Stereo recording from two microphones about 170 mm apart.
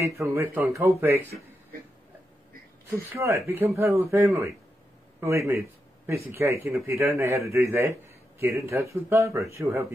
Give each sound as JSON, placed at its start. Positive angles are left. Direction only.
{"t": 0.0, "sound": "speech", "side_deg": -15}
{"t": 2.9, "sound": "a man's voice", "side_deg": -15}